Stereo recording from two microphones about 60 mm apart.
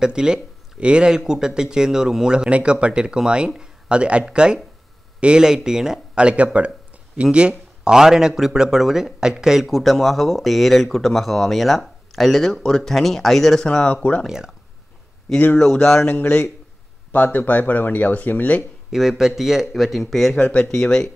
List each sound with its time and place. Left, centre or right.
0.0 s speech: centre
14.2 s speech: centre
15.3 s speech: centre
17.1 s speech: left
18.9 s speech: centre
20.3 s speech: centre